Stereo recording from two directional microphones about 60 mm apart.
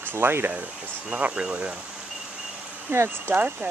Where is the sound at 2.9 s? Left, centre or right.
Right.